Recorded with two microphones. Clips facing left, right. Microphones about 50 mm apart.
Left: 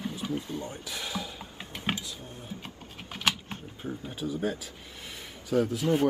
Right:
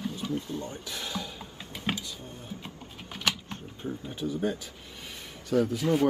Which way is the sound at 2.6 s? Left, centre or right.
Centre.